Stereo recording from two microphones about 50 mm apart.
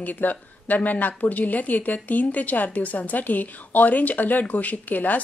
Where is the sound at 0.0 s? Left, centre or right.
Left.